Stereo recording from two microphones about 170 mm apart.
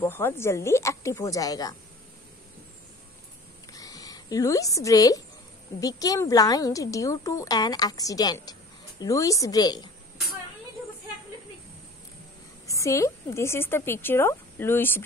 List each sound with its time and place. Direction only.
0.0 s a woman's voice: 15° left (ahead or behind)
3.7 s zipper: 20° left (ahead or behind)
5.8 s a woman's voice: 20° left (ahead or behind)
12.6 s a woman's voice: 20° left (ahead or behind)